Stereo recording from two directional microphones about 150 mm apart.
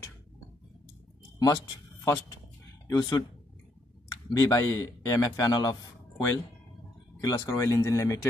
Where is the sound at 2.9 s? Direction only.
25° left (ahead or behind).